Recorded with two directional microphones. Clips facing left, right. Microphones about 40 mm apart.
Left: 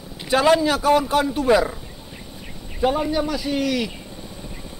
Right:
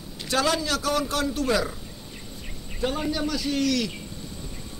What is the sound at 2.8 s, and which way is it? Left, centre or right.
Speech, centre.